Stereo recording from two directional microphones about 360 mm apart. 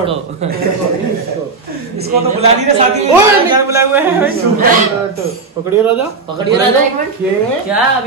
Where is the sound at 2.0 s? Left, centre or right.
Centre.